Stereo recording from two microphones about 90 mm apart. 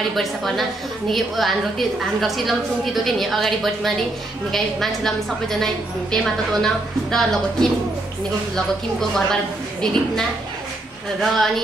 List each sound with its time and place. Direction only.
0.1 s a woman's voice: centre (ahead or behind)
9.1 s a woman's voice: 5° left (ahead or behind)